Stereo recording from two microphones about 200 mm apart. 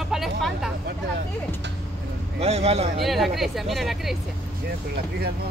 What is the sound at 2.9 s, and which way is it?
Speech, centre (ahead or behind).